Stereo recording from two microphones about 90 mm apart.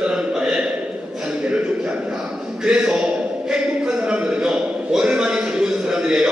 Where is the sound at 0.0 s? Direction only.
10° right (ahead or behind).